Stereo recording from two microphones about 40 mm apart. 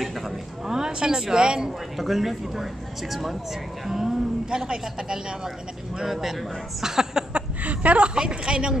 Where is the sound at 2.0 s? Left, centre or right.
Centre.